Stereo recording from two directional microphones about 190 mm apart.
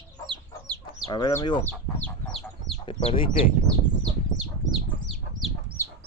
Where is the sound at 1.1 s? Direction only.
20° left (ahead or behind).